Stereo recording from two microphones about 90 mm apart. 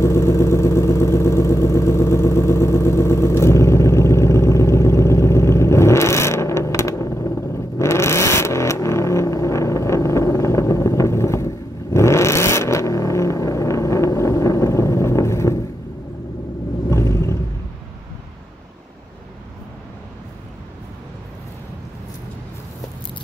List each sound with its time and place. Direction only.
0.0 s vehicle: 30° left (ahead or behind)
16.9 s vehicle: 35° left (ahead or behind)